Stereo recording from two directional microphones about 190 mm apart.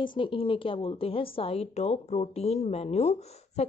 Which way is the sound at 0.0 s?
25° left (ahead or behind).